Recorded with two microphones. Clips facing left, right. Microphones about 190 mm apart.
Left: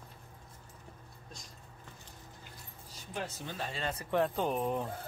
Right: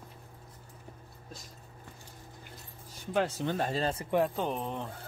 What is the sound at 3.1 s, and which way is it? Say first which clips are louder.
Speech: right 10 dB; 65° right (ahead or behind).